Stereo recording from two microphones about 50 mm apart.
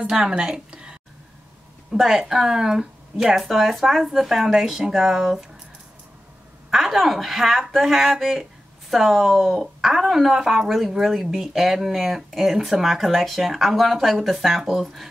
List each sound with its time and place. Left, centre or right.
0.3 s a woman's voice: centre
6.7 s speech: centre